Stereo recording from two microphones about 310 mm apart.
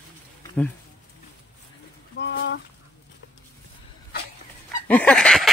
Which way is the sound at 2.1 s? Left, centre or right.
Left.